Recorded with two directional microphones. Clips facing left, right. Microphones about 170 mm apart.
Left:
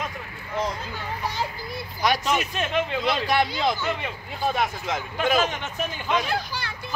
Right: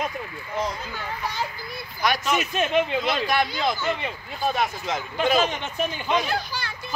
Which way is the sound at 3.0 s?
30° left (ahead or behind).